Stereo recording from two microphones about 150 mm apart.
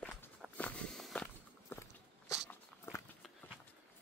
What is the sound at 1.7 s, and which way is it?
Walk, 15° left (ahead or behind).